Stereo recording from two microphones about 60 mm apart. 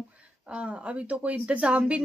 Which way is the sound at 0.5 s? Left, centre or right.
Centre.